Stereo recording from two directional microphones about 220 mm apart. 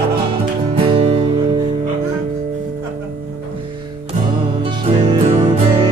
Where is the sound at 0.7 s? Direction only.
25° right (ahead or behind).